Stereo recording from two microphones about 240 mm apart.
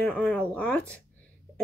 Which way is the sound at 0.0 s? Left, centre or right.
Centre.